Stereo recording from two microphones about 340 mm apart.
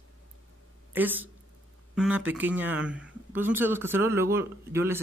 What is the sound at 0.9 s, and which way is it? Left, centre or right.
Speech, centre.